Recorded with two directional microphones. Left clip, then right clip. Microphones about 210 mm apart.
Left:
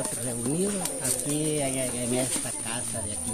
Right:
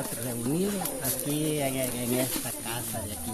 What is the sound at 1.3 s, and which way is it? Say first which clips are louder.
Speech: even; centre (ahead or behind).